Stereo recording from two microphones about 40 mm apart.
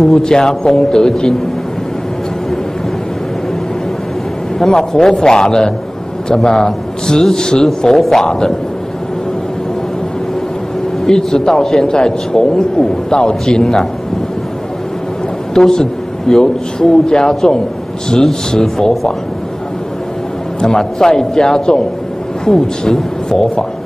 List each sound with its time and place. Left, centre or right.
0.0 s a man's voice: centre
4.6 s a man's voice: centre
7.6 s a man's voice: centre
11.1 s a man's voice: centre
15.5 s a man's voice: centre
20.6 s a man's voice: centre